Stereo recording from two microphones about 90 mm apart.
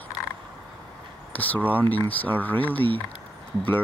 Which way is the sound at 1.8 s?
20° left (ahead or behind).